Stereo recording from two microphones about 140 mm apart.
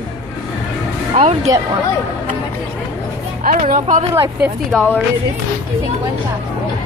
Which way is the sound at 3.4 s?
70° right (ahead or behind).